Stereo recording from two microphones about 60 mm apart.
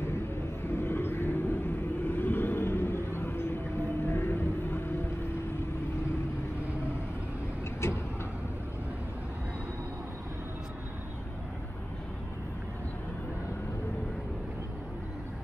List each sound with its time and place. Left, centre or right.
0.7 s vehicle: left
7.8 s vehicle: left